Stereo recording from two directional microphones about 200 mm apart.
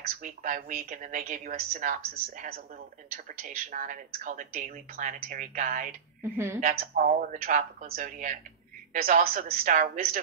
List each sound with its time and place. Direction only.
0.2 s speech: 40° right (ahead or behind)
6.2 s a woman's voice: 10° right (ahead or behind)
6.6 s speech: 45° right (ahead or behind)